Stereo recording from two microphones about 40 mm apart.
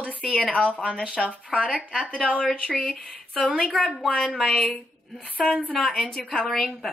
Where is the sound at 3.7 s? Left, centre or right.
Centre.